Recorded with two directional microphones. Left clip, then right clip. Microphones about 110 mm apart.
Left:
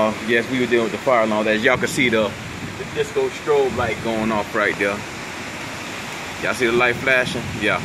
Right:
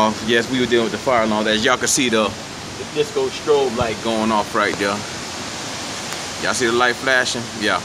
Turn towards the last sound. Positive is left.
turn(degrees=0)  # may be behind; listen again after turning